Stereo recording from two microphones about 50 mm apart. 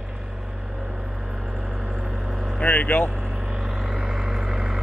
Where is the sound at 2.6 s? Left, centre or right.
Left.